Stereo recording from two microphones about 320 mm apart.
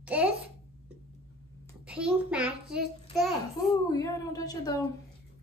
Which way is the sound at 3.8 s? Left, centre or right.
Centre.